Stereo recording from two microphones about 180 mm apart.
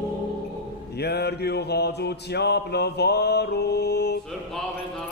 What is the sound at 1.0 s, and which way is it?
Mantra, 65° left (ahead or behind).